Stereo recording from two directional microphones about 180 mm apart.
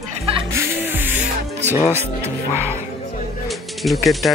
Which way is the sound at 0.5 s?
15° right (ahead or behind).